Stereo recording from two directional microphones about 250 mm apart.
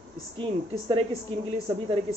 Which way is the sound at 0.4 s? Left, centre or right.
Centre.